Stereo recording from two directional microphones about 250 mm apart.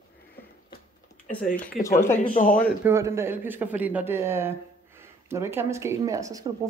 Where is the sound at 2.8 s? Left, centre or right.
Centre.